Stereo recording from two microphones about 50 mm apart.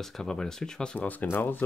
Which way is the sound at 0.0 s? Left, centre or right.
Centre.